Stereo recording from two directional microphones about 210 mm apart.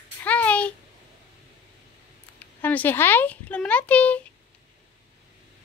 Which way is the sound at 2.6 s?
10° left (ahead or behind).